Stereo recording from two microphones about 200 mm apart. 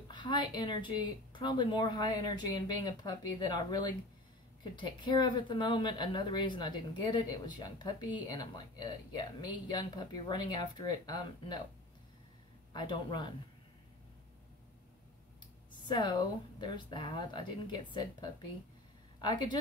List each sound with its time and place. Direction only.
0.1 s speech: 20° left (ahead or behind)
12.7 s speech: 25° left (ahead or behind)
15.9 s speech: 20° left (ahead or behind)